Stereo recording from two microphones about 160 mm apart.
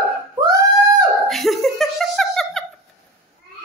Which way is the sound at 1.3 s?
Centre (ahead or behind).